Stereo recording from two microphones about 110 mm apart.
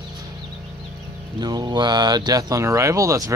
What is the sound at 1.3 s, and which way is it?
Speech, 40° right (ahead or behind).